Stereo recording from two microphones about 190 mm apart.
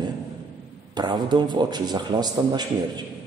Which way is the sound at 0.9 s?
25° right (ahead or behind).